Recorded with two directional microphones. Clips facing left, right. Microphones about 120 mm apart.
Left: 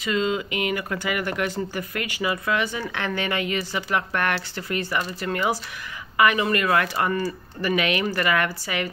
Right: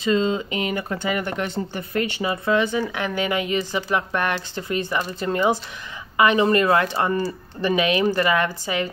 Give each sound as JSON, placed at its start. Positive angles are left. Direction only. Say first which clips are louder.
{"t": 0.0, "sound": "speech", "louder": "right 3 dB", "side_deg": -30}